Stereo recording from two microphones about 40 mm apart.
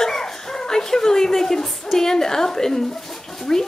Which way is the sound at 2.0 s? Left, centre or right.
Centre.